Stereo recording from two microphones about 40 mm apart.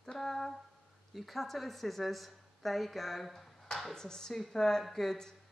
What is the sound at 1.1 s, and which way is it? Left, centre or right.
A woman's voice, centre.